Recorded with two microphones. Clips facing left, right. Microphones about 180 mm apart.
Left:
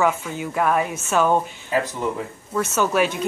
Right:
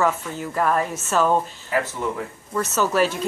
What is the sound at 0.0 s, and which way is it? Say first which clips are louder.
Speech: left 1 dB; 5° left (ahead or behind).